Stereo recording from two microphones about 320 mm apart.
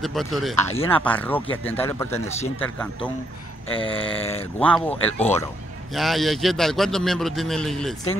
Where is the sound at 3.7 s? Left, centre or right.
Centre.